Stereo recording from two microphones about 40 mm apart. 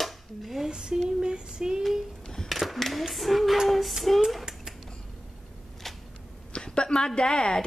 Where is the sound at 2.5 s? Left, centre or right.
Centre.